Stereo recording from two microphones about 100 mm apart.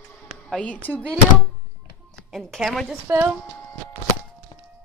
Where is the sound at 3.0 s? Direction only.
20° right (ahead or behind).